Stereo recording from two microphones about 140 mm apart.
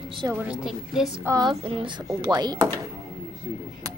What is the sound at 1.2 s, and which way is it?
Speech, 25° right (ahead or behind).